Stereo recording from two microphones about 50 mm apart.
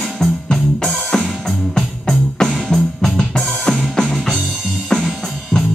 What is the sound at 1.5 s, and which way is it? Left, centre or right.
Music, centre.